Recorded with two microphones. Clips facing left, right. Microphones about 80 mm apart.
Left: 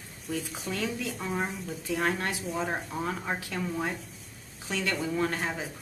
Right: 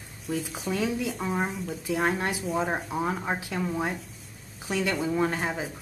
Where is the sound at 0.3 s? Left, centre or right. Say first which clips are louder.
Right 4 dB; centre.